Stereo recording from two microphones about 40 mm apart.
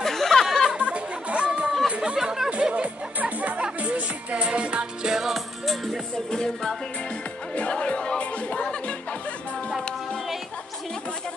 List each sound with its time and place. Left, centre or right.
0.0 s a sound: centre
0.7 s music: right
2.1 s chatter: centre
2.5 s music: right
3.2 s music: right
5.1 s music: centre
6.3 s music: centre
7.5 s music: left